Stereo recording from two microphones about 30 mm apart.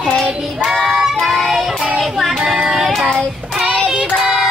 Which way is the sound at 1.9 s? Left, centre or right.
Centre.